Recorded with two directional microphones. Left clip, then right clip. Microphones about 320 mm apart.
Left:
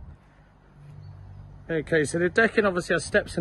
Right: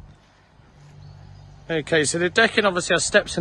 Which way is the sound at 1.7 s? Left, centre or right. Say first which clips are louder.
Right 3 dB; centre.